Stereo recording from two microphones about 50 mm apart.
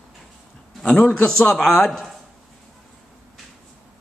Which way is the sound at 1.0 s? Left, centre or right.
Left.